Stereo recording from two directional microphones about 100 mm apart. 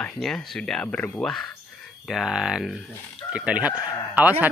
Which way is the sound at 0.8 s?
15° left (ahead or behind).